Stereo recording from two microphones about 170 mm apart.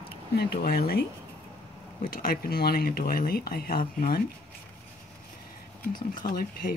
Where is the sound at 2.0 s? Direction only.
55° left (ahead or behind).